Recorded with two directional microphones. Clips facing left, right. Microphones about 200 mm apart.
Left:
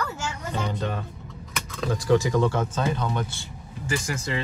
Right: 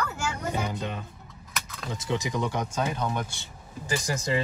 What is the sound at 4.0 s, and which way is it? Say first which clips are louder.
Speech: even; 40° right (ahead or behind).